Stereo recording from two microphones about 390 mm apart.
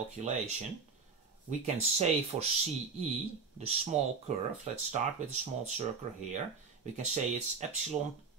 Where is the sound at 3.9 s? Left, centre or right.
Centre.